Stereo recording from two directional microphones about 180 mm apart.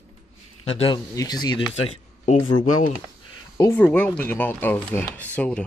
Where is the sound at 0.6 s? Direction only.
30° left (ahead or behind).